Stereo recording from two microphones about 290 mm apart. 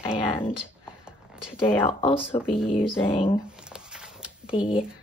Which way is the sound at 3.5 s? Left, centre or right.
Centre.